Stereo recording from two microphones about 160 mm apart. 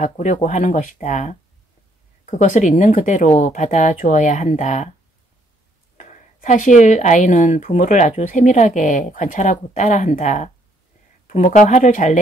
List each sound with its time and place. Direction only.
0.0 s speech: 50° left (ahead or behind)
5.9 s speech: 50° left (ahead or behind)